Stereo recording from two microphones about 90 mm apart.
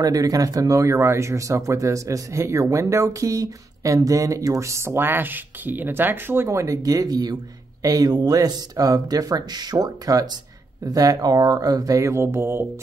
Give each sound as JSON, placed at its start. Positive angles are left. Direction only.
{"t": 0.0, "sound": "speech", "side_deg": -40}